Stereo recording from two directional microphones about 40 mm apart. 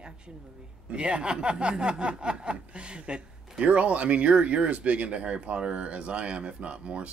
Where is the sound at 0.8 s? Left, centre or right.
Right.